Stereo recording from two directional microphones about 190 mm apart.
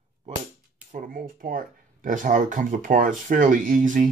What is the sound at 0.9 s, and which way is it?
Speech, 45° right (ahead or behind).